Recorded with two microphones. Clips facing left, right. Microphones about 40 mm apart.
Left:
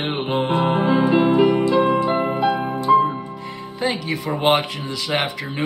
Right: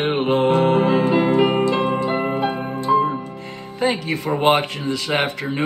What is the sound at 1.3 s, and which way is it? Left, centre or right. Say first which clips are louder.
Music: left 1 dB; right.